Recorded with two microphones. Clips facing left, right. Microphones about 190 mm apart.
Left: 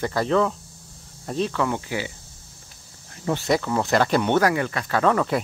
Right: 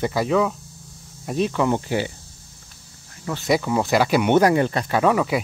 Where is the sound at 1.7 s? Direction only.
35° right (ahead or behind).